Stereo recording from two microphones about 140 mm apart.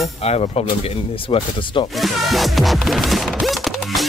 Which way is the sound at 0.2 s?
45° left (ahead or behind).